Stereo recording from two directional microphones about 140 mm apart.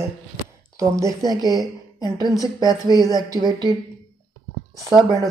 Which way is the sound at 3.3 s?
30° right (ahead or behind).